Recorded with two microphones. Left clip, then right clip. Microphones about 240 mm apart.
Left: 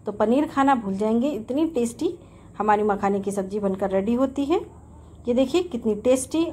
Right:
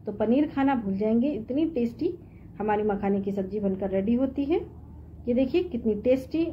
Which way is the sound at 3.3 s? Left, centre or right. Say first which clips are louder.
Left 4 dB; left.